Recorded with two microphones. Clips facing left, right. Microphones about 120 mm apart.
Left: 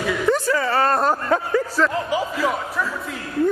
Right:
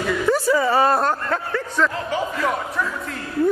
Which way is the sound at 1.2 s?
15° left (ahead or behind).